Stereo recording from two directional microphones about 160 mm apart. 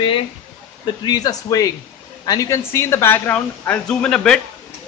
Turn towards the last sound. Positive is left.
turn(degrees=5)  # may be behind; listen again after turning